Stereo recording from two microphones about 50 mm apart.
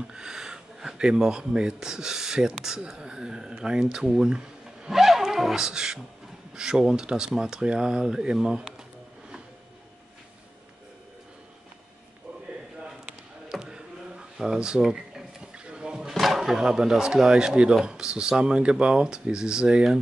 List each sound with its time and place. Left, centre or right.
0.0 s speech: centre
13.5 s a sound: centre
16.0 s speech: centre